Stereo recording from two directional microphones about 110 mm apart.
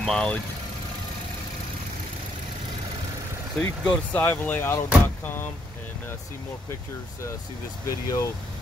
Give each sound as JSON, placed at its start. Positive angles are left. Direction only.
{"t": 0.0, "sound": "speech", "side_deg": 5}
{"t": 3.8, "sound": "speech", "side_deg": 10}
{"t": 7.8, "sound": "speech", "side_deg": 30}